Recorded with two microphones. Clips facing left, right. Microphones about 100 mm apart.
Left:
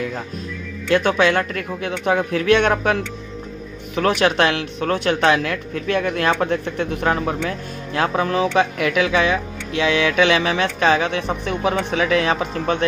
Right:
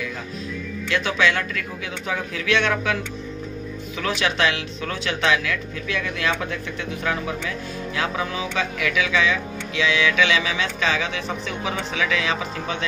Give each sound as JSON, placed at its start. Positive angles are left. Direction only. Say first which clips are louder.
{"t": 0.8, "sound": "speech", "louder": "left 5 dB", "side_deg": 50}